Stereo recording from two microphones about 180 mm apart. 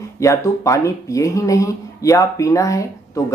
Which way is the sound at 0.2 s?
15° left (ahead or behind).